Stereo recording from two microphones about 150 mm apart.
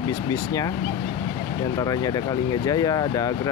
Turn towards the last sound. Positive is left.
turn(degrees=25)  # may be behind; listen again after turning